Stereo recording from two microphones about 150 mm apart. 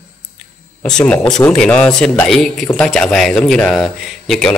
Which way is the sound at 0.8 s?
5° left (ahead or behind).